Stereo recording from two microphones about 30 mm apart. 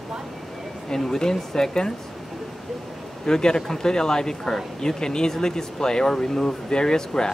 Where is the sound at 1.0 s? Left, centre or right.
Left.